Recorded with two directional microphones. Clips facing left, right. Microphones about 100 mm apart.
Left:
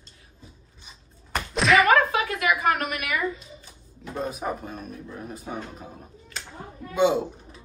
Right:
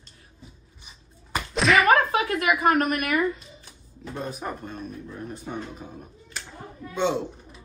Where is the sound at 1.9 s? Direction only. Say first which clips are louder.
Even; 40° right (ahead or behind).